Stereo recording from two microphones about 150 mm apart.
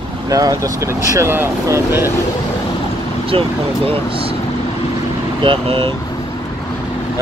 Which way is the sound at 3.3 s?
40° right (ahead or behind).